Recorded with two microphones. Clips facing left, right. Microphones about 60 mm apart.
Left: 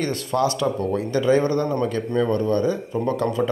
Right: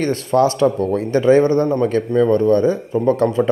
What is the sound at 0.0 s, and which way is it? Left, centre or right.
Speech, right.